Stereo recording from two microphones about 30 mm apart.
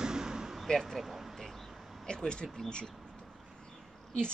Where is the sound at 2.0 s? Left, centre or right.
Left.